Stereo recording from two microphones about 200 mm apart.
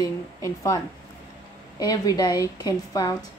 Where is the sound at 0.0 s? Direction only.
15° left (ahead or behind).